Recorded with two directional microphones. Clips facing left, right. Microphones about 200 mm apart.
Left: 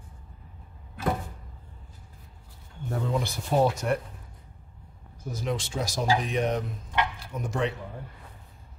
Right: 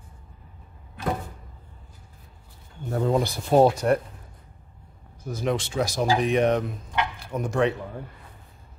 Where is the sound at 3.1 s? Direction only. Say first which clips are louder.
Right 7 dB; 40° right (ahead or behind).